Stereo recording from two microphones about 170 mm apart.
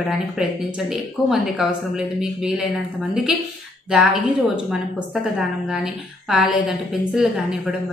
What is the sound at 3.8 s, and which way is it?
A woman's voice, 5° right (ahead or behind).